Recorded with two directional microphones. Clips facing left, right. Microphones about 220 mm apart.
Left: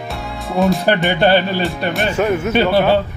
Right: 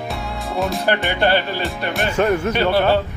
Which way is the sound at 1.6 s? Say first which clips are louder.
Left 4 dB; centre (ahead or behind).